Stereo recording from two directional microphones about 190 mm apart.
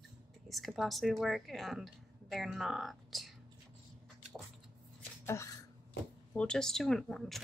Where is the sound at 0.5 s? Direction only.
Centre (ahead or behind).